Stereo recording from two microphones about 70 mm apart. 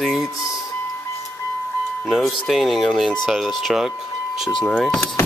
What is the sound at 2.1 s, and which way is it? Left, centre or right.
Speech, centre.